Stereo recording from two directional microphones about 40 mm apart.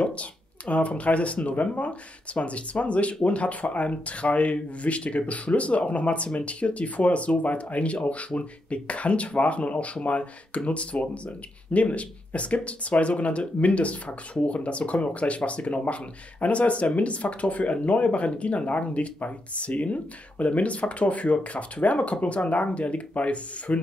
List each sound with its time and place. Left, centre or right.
0.0 s speech: left